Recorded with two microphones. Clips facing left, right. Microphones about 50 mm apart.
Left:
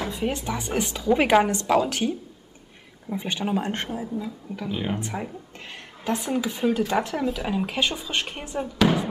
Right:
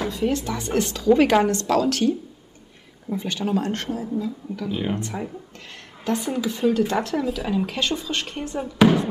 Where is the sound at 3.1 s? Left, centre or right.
Centre.